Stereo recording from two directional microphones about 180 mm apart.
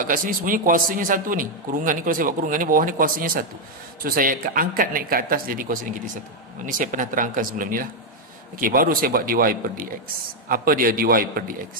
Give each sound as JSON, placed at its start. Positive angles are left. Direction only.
{"t": 0.0, "sound": "a man's voice", "side_deg": -50}